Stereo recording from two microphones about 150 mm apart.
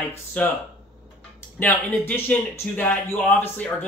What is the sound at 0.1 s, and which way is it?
Speech, 10° left (ahead or behind).